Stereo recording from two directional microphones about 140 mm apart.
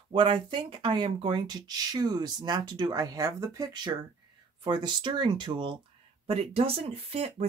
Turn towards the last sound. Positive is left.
turn(degrees=-45)  # may be behind; listen again after turning